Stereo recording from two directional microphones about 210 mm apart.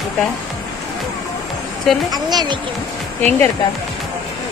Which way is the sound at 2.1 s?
20° right (ahead or behind).